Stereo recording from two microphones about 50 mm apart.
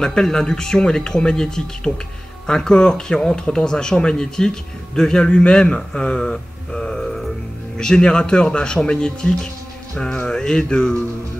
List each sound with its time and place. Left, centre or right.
0.0 s speech: centre
1.9 s speech: left
2.4 s speech: centre